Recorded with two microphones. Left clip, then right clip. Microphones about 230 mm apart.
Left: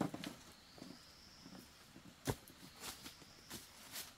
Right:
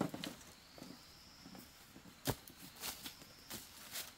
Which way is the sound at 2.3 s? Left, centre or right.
Right.